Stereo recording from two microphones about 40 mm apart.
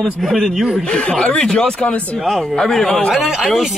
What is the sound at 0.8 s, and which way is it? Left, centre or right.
Speech, left.